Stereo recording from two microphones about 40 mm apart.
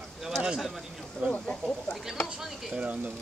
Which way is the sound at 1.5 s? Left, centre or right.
Left.